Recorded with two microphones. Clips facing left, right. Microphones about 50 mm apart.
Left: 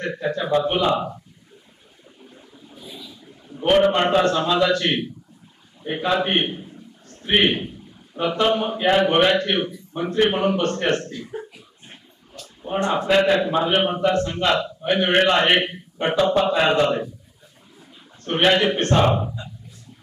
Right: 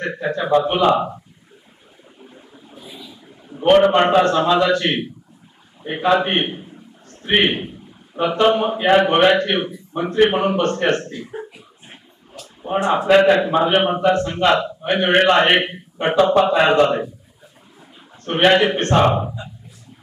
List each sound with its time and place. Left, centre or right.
0.0 s a man's voice: centre
2.2 s a sound: centre
3.8 s a man's voice: centre
18.2 s a man's voice: centre